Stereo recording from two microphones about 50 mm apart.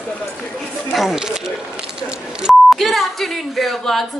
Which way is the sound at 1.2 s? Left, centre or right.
Centre.